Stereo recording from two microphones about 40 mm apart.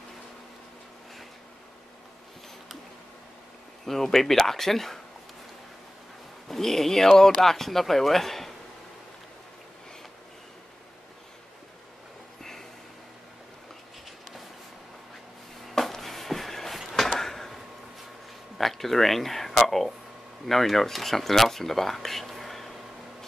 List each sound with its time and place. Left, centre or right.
3.8 s speech: centre
6.5 s speech: centre
15.7 s a sound: centre
18.6 s speech: centre